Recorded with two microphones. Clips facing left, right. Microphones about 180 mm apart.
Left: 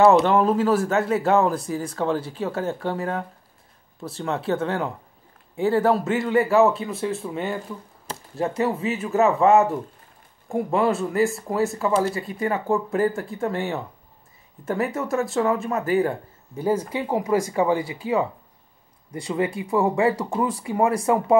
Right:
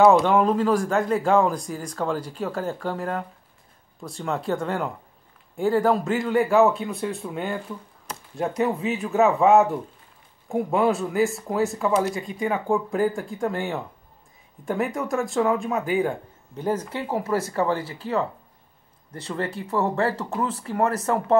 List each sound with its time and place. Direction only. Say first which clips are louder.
0.0 s speech: left 1 dB; 5° left (ahead or behind)